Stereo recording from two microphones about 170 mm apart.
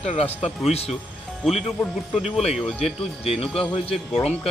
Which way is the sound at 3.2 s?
35° left (ahead or behind).